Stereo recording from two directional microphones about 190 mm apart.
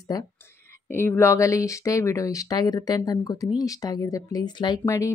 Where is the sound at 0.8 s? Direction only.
10° left (ahead or behind).